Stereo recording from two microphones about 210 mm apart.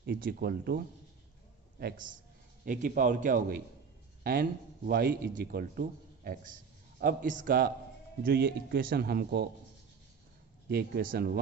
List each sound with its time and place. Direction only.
0.0 s speech: 45° right (ahead or behind)
1.8 s a man's voice: 45° right (ahead or behind)
10.7 s speech: 50° right (ahead or behind)